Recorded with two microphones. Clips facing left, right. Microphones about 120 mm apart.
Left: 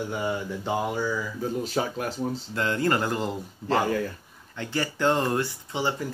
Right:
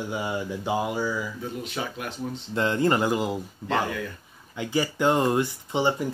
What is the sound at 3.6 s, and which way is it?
Speech, 35° left (ahead or behind).